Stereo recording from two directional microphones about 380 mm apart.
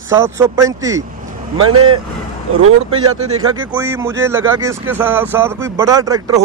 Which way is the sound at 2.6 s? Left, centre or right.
Right.